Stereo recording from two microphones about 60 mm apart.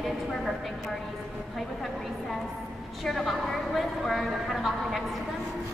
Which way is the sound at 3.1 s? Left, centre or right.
Centre.